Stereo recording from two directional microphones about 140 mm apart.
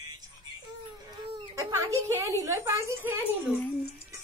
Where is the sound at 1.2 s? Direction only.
35° right (ahead or behind).